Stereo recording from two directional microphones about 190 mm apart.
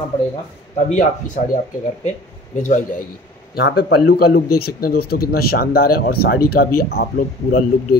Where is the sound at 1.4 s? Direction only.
45° left (ahead or behind).